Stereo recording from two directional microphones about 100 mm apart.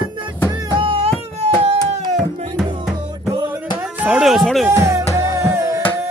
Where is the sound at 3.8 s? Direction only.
15° right (ahead or behind).